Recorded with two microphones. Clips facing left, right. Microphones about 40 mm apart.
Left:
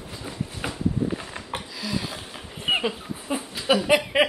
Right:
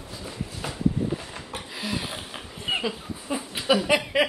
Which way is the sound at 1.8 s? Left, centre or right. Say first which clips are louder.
Even; right.